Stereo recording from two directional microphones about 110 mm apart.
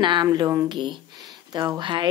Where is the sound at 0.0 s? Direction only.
40° right (ahead or behind).